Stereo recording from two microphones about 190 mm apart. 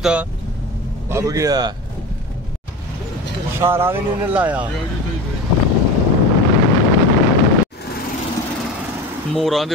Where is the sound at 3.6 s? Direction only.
15° right (ahead or behind).